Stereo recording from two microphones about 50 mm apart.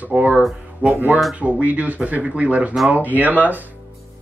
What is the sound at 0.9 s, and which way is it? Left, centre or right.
Speech, right.